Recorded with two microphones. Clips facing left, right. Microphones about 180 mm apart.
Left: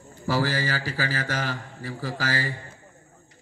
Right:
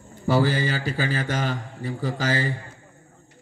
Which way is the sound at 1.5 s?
25° right (ahead or behind).